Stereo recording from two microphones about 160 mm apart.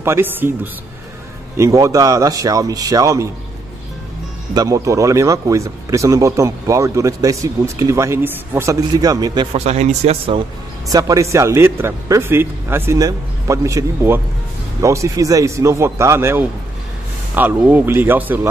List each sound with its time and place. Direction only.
0.0 s speech: 15° right (ahead or behind)
1.6 s speech: 20° right (ahead or behind)
4.6 s speech: 20° right (ahead or behind)
9.5 s speech: 40° right (ahead or behind)
10.9 s speech: 20° right (ahead or behind)